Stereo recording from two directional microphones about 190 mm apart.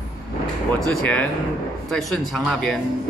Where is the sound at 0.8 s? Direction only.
5° left (ahead or behind).